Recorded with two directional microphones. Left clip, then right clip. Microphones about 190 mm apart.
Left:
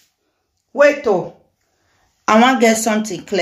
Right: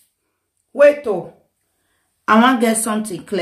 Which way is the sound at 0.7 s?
10° right (ahead or behind).